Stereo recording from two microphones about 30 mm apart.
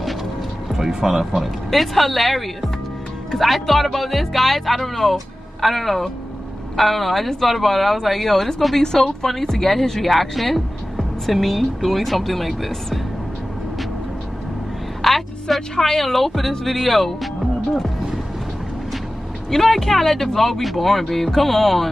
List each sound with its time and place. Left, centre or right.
0.7 s speech: centre
1.4 s a woman's voice: centre
15.0 s a sound: centre
15.8 s speech: centre
19.5 s speech: centre